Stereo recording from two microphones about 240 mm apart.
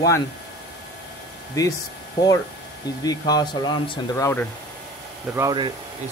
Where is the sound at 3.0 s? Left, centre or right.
Centre.